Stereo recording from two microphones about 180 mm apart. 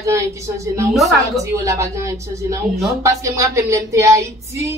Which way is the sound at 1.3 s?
20° right (ahead or behind).